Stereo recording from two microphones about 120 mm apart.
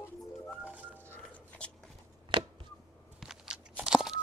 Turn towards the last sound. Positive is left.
turn(degrees=-5)  # may be behind; listen again after turning